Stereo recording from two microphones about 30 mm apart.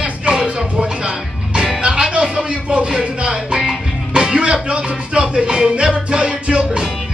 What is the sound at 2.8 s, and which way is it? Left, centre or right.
Music, right.